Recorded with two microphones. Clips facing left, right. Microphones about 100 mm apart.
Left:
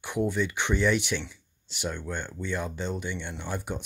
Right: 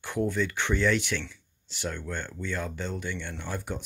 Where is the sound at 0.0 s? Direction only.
20° left (ahead or behind).